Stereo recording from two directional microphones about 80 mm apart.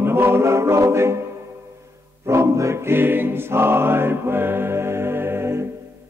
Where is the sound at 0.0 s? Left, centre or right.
Right.